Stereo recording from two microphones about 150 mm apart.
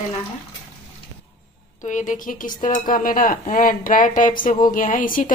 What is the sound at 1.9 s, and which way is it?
Speech, 55° left (ahead or behind).